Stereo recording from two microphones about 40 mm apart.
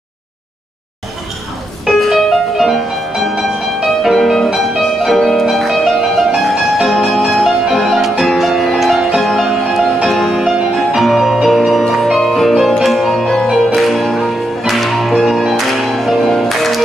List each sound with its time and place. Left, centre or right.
1.9 s music: centre
10.4 s music: centre